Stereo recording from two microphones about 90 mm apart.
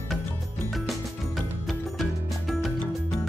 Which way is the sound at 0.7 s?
Centre (ahead or behind).